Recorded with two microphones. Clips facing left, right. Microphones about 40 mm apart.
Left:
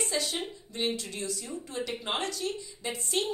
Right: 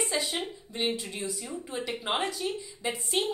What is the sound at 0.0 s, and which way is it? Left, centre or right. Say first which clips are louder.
A woman's voice: right 1 dB; centre.